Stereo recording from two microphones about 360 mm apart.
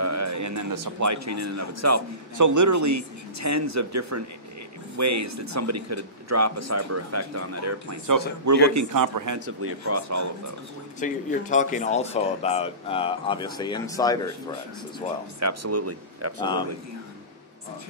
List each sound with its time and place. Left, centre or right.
0.0 s speech: right
9.6 s speech: right
11.0 s speech: left
15.4 s speech: right